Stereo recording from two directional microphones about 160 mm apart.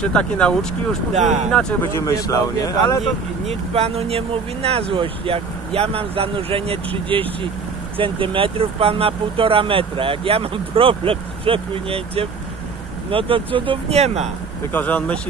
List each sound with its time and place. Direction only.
0.0 s speech: 5° left (ahead or behind)
1.1 s speech: 50° right (ahead or behind)
1.5 s speech: 5° left (ahead or behind)
2.0 s speech: 20° left (ahead or behind)
3.4 s speech: 40° right (ahead or behind)
14.7 s speech: 10° left (ahead or behind)